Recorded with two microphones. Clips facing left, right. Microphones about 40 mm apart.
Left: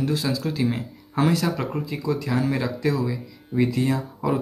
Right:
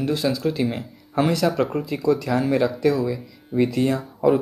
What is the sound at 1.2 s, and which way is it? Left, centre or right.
Speech, right.